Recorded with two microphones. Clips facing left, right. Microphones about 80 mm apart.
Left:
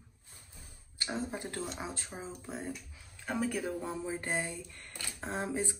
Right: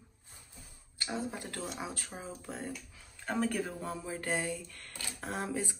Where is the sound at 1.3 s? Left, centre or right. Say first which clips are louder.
Left 1 dB; left.